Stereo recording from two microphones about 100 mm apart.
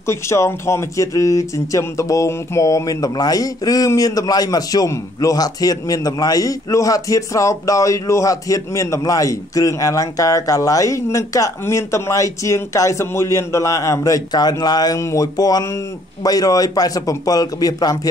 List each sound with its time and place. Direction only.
0.0 s speech: 30° left (ahead or behind)
15.0 s speech: 30° left (ahead or behind)